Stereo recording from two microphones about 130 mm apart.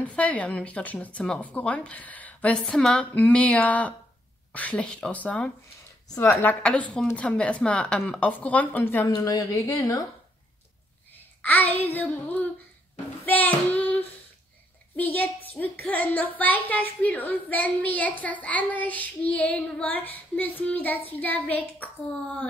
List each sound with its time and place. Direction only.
0.0 s speech: 10° left (ahead or behind)
9.1 s speech: 30° left (ahead or behind)
11.4 s speech: 10° left (ahead or behind)